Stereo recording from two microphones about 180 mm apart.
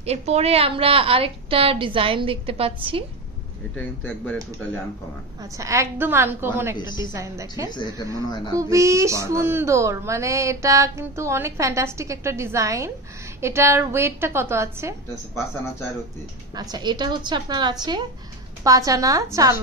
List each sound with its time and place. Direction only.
0.0 s a woman's voice: 35° right (ahead or behind)
3.7 s speech: 5° left (ahead or behind)
5.4 s speech: 15° right (ahead or behind)
7.7 s speech: 25° left (ahead or behind)
8.5 s speech: 15° right (ahead or behind)
16.5 s a woman's voice: 20° right (ahead or behind)